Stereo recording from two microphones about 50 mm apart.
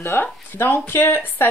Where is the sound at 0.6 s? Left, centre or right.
Left.